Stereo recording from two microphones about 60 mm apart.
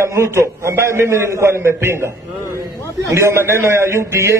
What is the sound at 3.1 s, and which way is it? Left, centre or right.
A man's voice, right.